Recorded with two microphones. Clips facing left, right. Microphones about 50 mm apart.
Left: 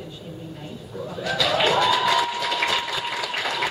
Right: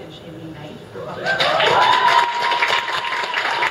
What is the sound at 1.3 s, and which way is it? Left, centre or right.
Applause, right.